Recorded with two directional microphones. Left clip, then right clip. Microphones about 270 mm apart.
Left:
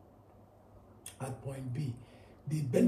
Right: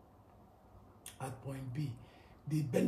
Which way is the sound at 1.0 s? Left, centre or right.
Right.